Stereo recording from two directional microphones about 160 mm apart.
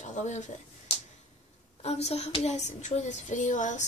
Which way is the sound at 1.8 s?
40° left (ahead or behind).